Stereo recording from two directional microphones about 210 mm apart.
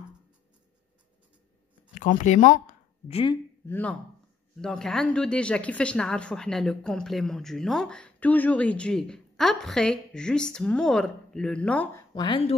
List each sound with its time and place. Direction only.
2.0 s speech: 35° left (ahead or behind)
3.6 s speech: 10° left (ahead or behind)
12.1 s speech: 20° left (ahead or behind)